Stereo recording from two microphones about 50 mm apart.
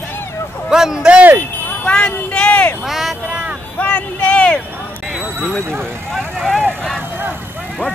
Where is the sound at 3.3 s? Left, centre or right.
Right.